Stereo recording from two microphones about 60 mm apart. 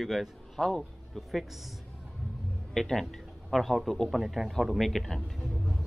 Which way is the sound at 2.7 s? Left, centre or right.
Centre.